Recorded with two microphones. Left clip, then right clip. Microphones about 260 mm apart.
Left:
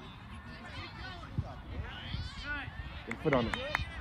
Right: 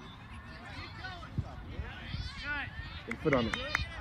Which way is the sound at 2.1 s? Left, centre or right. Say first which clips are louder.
Right 4 dB; centre.